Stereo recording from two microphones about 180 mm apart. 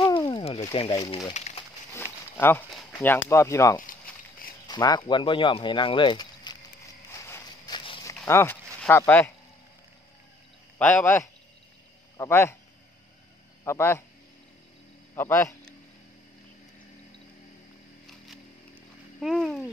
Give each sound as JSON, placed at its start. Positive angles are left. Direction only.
{"t": 0.0, "sound": "a sound", "side_deg": 25}
{"t": 1.3, "sound": "speech", "side_deg": 40}
{"t": 2.3, "sound": "speech", "side_deg": 10}
{"t": 7.1, "sound": "walk", "side_deg": 15}
{"t": 8.1, "sound": "speech", "side_deg": 15}
{"t": 10.8, "sound": "speech", "side_deg": 5}
{"t": 13.7, "sound": "speech", "side_deg": 15}
{"t": 15.1, "sound": "speech", "side_deg": 15}
{"t": 19.1, "sound": "a sound", "side_deg": 0}